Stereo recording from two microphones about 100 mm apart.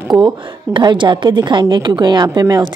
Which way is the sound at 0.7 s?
55° right (ahead or behind).